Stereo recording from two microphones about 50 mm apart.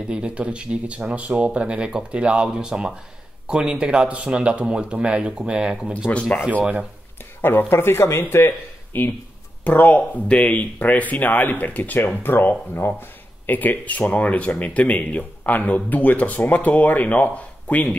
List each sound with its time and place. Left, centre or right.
0.1 s speech: right
7.4 s speech: left
10.2 s speech: left
12.2 s speech: left